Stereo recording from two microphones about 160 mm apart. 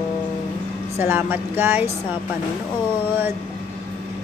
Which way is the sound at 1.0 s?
10° right (ahead or behind).